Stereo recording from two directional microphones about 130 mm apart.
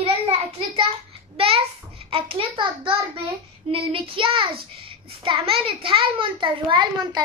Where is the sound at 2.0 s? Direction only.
45° right (ahead or behind).